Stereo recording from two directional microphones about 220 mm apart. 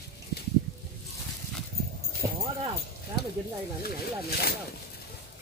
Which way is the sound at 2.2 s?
15° right (ahead or behind).